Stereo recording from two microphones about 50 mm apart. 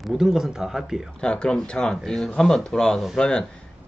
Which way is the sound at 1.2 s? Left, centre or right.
Centre.